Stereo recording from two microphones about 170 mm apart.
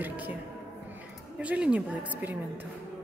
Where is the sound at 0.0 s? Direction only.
10° right (ahead or behind).